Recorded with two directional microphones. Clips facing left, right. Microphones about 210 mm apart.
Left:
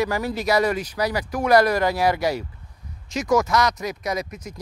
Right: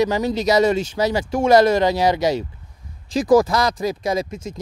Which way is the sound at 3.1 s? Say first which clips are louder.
Right 5 dB; 30° right (ahead or behind).